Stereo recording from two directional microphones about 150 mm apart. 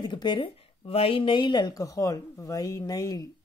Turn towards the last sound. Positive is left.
turn(degrees=25)  # may be behind; listen again after turning